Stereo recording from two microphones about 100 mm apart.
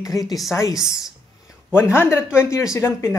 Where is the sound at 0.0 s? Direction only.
35° left (ahead or behind).